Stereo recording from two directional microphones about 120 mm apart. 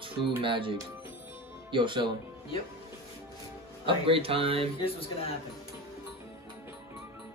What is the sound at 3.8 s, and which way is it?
Speech, 50° right (ahead or behind).